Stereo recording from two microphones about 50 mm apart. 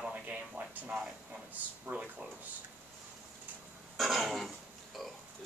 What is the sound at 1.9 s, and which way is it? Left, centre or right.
Speech, right.